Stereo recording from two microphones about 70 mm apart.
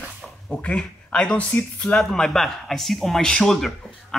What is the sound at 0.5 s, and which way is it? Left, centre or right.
Speech, centre.